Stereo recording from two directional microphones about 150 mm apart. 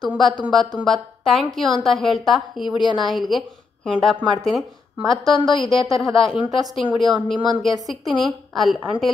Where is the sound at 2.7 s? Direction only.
30° left (ahead or behind).